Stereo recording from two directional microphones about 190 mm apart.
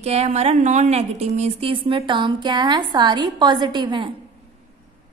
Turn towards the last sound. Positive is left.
turn(degrees=-25)  # may be behind; listen again after turning